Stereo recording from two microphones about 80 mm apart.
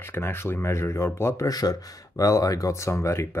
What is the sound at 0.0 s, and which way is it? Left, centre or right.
Speech, left.